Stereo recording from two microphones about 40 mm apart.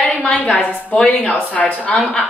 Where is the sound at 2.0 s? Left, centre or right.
Centre.